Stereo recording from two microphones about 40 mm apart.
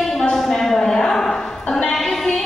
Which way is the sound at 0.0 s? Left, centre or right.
Centre.